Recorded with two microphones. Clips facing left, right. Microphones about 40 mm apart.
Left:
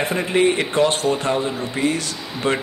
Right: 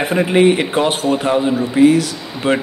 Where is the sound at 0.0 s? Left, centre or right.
Centre.